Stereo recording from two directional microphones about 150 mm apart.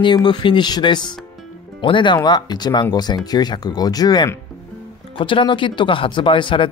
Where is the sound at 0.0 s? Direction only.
30° left (ahead or behind).